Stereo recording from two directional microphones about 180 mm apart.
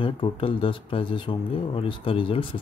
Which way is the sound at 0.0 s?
30° left (ahead or behind).